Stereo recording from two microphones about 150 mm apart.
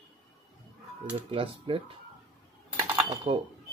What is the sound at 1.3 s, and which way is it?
Speech, 35° right (ahead or behind).